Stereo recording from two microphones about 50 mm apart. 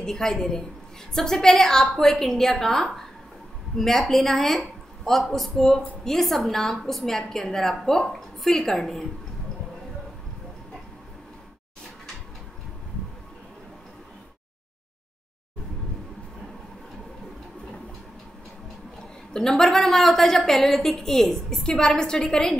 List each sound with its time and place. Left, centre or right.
0.0 s a woman's voice: centre
19.3 s a woman's voice: centre